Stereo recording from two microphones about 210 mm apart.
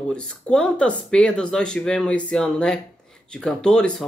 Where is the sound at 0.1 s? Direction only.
5° left (ahead or behind).